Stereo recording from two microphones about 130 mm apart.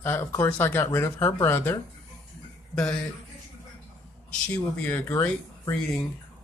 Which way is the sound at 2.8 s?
10° left (ahead or behind).